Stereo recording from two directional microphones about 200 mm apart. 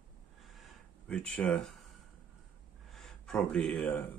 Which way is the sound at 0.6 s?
Centre (ahead or behind).